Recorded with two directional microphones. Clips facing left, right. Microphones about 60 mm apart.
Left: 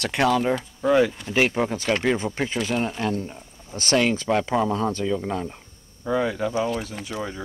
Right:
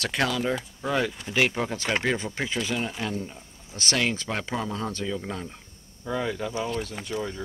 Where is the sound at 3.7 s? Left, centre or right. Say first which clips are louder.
Left 5 dB; left.